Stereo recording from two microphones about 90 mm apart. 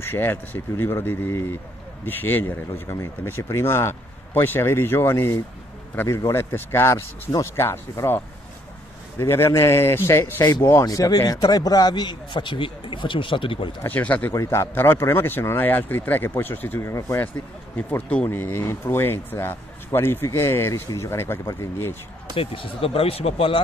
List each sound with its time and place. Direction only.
0.0 s speech: 25° left (ahead or behind)
9.2 s speech: 30° left (ahead or behind)
10.9 s speech: 40° left (ahead or behind); by 13.7 s 70° left (ahead or behind)
13.8 s speech: 20° left (ahead or behind)
14.3 s speech: 35° left (ahead or behind); by 16.8 s 20° left (ahead or behind)
16.8 s speech: 30° left (ahead or behind)
17.7 s speech: 15° left (ahead or behind)
22.3 s speech: 90° left